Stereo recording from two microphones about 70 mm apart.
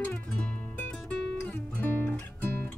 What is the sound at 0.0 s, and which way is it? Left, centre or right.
Music, centre.